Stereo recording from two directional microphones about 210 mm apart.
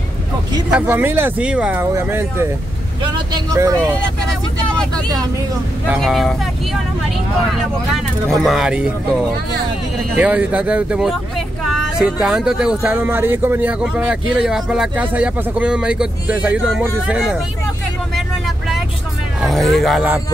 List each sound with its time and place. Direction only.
0.7 s speech: 5° right (ahead or behind)
5.9 s speech: centre (ahead or behind)
10.1 s speech: 5° right (ahead or behind)
19.4 s speech: centre (ahead or behind)